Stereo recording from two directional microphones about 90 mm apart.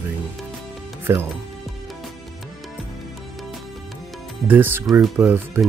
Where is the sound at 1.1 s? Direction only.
25° right (ahead or behind).